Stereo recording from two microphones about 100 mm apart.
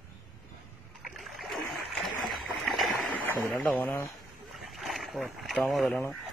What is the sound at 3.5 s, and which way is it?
Speech, 15° left (ahead or behind).